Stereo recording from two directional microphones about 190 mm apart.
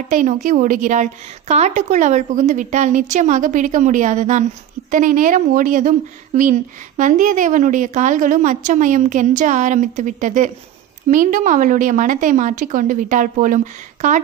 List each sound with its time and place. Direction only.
0.1 s a woman's voice: 40° right (ahead or behind)